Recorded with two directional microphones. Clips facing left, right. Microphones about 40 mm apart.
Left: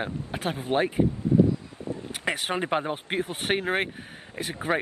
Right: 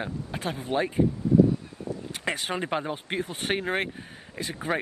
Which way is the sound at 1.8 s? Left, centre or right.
Left.